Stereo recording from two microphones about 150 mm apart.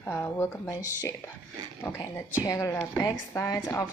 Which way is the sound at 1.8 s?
20° left (ahead or behind).